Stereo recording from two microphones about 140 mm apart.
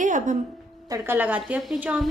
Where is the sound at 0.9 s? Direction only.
15° right (ahead or behind).